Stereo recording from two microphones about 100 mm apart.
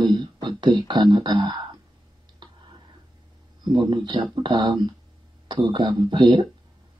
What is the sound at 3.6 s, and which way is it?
Speech, 45° right (ahead or behind).